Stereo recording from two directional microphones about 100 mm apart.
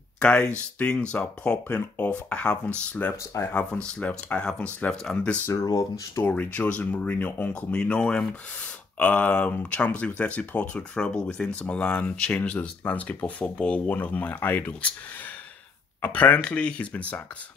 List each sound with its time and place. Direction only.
0.2 s speech: 10° left (ahead or behind)
5.5 s speech: 35° left (ahead or behind)
6.2 s speech: 15° left (ahead or behind)
16.0 s speech: 15° left (ahead or behind)